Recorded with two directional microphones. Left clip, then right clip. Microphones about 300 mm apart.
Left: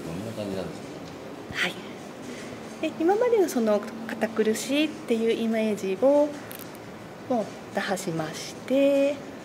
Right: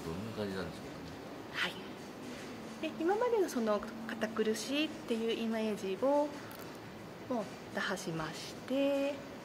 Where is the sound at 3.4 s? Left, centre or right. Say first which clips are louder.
Left 10 dB; centre.